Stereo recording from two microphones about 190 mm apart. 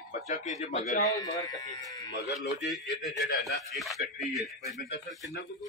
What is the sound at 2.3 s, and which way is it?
Speech, centre (ahead or behind).